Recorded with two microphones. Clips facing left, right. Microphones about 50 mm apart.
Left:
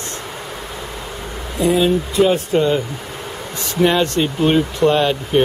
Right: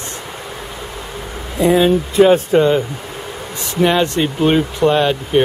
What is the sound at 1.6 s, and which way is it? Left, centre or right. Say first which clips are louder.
Speech: right 3 dB; right.